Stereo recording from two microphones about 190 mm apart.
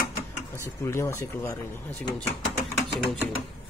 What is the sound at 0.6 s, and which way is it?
Speech, 15° left (ahead or behind).